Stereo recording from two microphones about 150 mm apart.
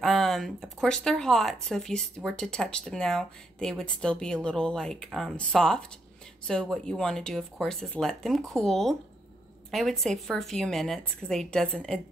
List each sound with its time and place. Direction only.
0.0 s speech: centre (ahead or behind)